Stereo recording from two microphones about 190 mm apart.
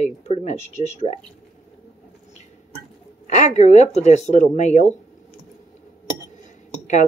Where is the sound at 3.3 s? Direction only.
35° left (ahead or behind).